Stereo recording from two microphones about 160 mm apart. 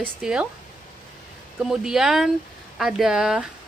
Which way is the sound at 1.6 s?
5° right (ahead or behind).